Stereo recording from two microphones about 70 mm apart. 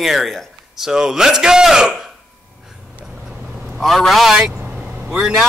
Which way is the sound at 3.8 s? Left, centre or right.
Centre.